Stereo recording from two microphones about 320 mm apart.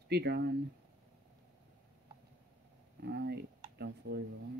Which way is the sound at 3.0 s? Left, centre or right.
Right.